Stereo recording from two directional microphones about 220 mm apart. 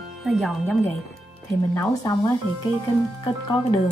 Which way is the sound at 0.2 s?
Centre (ahead or behind).